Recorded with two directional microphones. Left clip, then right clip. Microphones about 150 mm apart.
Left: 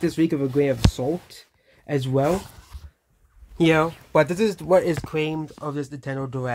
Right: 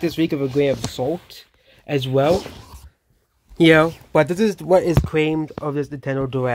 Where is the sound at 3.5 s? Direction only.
45° right (ahead or behind).